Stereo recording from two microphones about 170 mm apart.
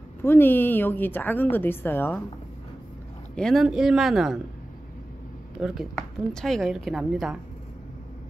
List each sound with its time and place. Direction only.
0.2 s a woman's voice: 15° left (ahead or behind)
3.3 s a woman's voice: centre (ahead or behind)
5.6 s a woman's voice: 5° right (ahead or behind)